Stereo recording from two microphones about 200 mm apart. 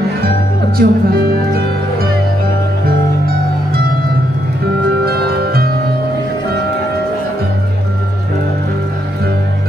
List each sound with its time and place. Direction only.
0.7 s music: 50° right (ahead or behind)
5.0 s music: 50° right (ahead or behind)